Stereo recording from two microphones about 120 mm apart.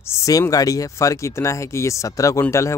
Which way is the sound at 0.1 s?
25° left (ahead or behind).